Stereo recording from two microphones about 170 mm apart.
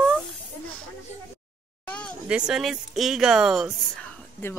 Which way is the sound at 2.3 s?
5° right (ahead or behind).